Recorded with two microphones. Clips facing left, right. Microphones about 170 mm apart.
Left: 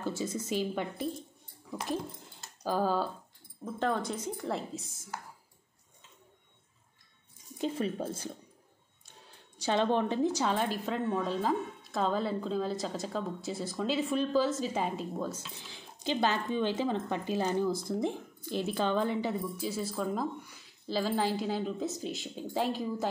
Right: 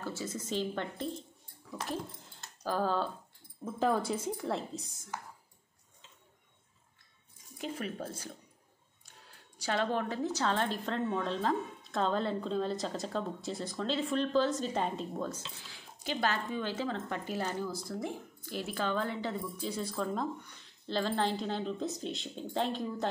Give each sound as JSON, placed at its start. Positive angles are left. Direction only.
{"t": 0.0, "sound": "speech", "side_deg": 15}
{"t": 2.6, "sound": "speech", "side_deg": 10}
{"t": 3.6, "sound": "a woman's voice", "side_deg": -5}
{"t": 7.5, "sound": "speech", "side_deg": 25}
{"t": 9.6, "sound": "a woman's voice", "side_deg": 20}
{"t": 15.6, "sound": "speech", "side_deg": 20}